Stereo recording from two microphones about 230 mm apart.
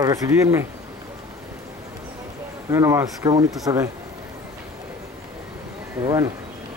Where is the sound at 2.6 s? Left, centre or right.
Centre.